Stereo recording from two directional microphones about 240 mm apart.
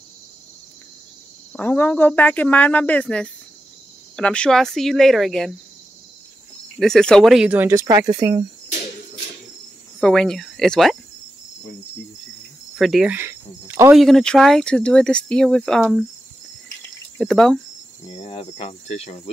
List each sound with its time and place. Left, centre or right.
1.5 s speech: centre
6.8 s speech: centre
9.9 s speech: centre
12.7 s speech: centre
13.9 s speech: centre
17.2 s speech: centre
18.1 s speech: left